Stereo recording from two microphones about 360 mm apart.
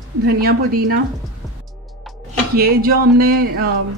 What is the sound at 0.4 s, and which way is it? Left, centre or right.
Speech, right.